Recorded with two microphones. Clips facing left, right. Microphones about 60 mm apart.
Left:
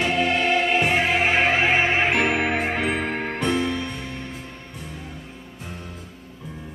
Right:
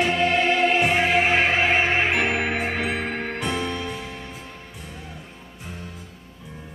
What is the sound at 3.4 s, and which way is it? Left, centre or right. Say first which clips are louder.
Music: left 5 dB; centre.